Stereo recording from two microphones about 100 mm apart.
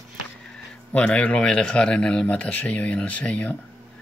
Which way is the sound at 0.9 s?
15° left (ahead or behind).